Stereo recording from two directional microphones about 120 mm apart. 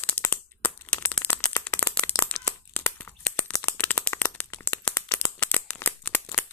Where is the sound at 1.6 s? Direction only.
10° left (ahead or behind).